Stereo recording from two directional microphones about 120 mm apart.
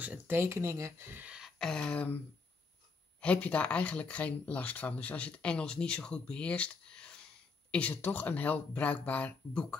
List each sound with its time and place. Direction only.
0.0 s speech: 15° right (ahead or behind)
1.6 s speech: 5° left (ahead or behind)
3.2 s speech: 10° left (ahead or behind)